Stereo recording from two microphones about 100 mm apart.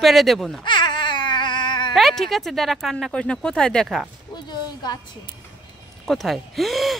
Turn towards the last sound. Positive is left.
turn(degrees=0)  # may be behind; listen again after turning